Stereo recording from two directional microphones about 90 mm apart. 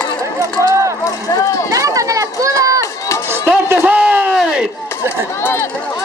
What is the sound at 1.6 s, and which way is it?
Run, 40° right (ahead or behind).